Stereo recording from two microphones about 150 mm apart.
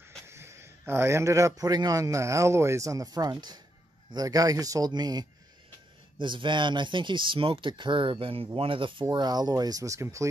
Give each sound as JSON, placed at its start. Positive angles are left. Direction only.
{"t": 0.3, "sound": "a man's voice", "side_deg": -15}